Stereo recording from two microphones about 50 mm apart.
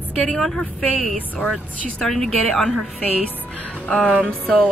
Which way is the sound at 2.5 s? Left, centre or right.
Left.